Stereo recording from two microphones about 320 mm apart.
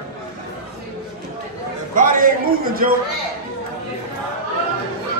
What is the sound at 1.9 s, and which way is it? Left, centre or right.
A man's voice, right.